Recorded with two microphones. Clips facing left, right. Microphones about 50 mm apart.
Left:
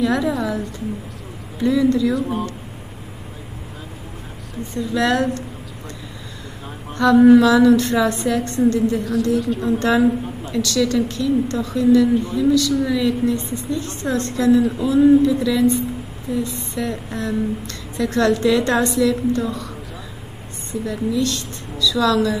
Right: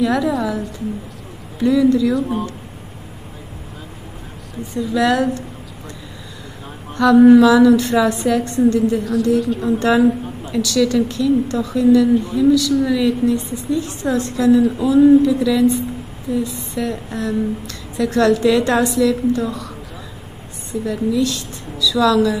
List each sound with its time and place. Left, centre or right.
0.0 s a woman's voice: centre
4.7 s a woman's voice: centre
7.0 s a woman's voice: centre
8.4 s a woman's voice: centre
8.9 s a woman's voice: centre
20.8 s a woman's voice: centre